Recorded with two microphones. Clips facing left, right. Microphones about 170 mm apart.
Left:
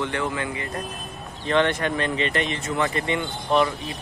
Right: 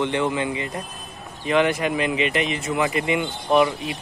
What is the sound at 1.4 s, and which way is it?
Speech, 5° right (ahead or behind).